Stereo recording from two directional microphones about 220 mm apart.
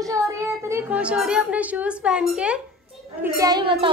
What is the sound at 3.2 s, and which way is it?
Speech, 15° right (ahead or behind).